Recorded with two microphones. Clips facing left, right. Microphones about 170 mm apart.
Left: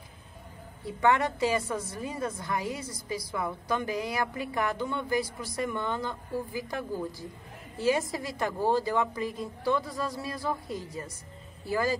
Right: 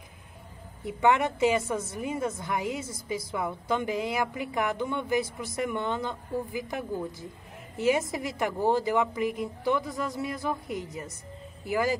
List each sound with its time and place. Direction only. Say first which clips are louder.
0.8 s a woman's voice: right 1 dB; 20° right (ahead or behind)